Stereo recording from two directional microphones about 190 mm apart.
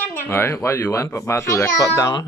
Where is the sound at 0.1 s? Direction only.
15° left (ahead or behind).